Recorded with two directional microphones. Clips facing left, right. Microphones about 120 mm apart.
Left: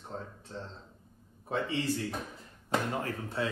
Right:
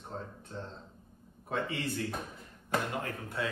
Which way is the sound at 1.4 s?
25° left (ahead or behind).